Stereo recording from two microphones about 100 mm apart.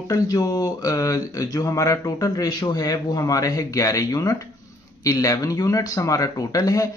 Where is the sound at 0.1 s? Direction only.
40° left (ahead or behind).